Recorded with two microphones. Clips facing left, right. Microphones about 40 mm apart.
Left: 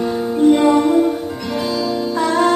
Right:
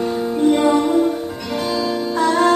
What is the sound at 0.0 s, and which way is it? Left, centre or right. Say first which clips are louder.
Music: left 3 dB; centre.